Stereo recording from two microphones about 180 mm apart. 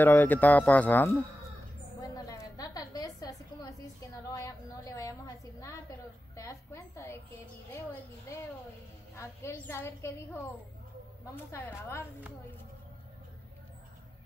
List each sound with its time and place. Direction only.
0.0 s a woman's voice: 10° left (ahead or behind)
2.0 s a sound: 20° left (ahead or behind)
9.1 s a woman's voice: 15° left (ahead or behind)